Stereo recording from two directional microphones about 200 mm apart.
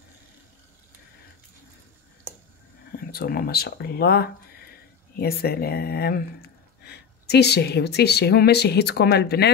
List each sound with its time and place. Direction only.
3.0 s speech: 50° left (ahead or behind)